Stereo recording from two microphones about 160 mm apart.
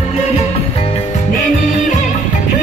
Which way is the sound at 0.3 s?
40° left (ahead or behind).